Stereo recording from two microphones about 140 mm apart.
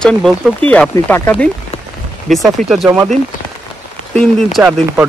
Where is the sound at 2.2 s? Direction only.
Centre (ahead or behind).